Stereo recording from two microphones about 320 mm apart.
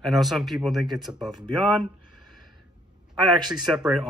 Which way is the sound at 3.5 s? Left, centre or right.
Centre.